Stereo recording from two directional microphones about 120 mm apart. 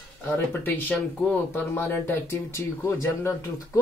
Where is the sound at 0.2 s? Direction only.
15° left (ahead or behind).